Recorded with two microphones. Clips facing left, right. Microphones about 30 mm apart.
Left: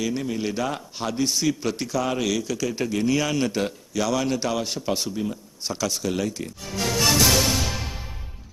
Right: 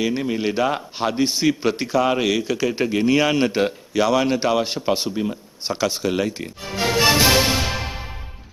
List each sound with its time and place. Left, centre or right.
0.0 s a man's voice: right